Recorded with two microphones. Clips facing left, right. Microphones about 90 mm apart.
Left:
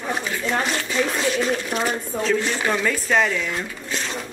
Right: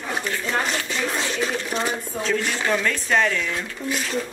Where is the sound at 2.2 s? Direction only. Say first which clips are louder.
Left 2 dB; centre (ahead or behind).